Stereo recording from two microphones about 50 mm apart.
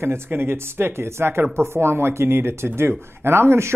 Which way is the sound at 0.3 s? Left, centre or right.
Right.